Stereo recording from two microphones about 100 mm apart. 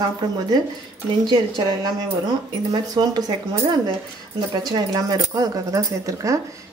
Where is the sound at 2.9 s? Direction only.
40° right (ahead or behind).